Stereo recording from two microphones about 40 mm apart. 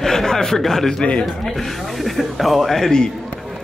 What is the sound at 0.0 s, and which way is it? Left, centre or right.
A man's voice, centre.